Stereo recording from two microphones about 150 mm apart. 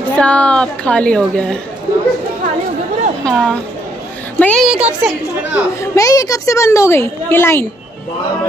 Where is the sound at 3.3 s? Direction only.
Centre (ahead or behind).